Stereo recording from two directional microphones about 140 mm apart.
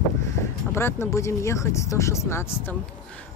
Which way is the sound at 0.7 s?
20° left (ahead or behind).